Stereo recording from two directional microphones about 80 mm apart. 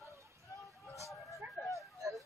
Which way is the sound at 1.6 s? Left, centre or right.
Right.